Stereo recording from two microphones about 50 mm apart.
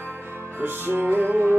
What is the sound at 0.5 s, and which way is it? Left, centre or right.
Music, right.